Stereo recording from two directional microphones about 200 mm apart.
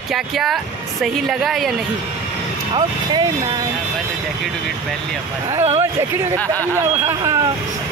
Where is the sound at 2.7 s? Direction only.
20° right (ahead or behind).